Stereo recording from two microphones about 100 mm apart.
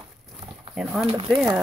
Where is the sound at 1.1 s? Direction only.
60° right (ahead or behind).